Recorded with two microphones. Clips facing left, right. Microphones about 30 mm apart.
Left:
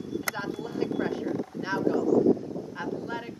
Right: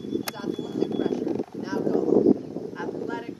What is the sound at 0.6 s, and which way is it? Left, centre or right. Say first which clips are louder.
Speech: right 6 dB; centre.